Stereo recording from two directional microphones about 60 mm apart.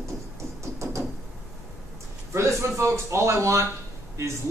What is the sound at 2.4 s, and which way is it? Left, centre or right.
A man's voice, right.